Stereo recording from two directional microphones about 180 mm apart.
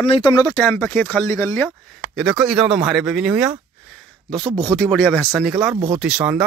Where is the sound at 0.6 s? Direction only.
10° left (ahead or behind).